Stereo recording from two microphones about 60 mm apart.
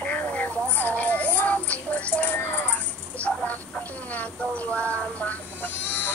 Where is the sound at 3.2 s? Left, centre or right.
Left.